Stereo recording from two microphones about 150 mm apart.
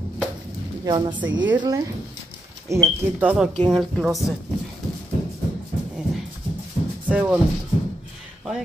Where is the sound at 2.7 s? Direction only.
15° right (ahead or behind).